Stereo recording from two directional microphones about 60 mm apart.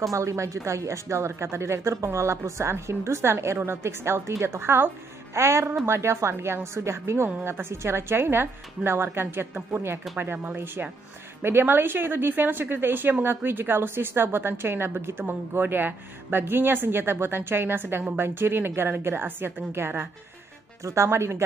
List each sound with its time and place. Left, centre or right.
0.1 s a woman's voice: right
5.3 s a woman's voice: right
20.8 s a woman's voice: right